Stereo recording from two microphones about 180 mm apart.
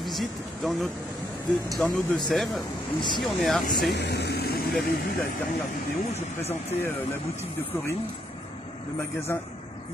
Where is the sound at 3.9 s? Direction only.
70° left (ahead or behind).